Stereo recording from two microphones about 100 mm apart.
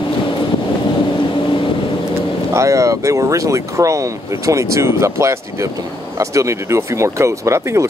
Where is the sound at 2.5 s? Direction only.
30° right (ahead or behind).